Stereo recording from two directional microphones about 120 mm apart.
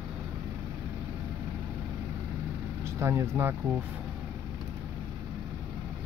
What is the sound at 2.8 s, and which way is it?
Speech, 25° right (ahead or behind).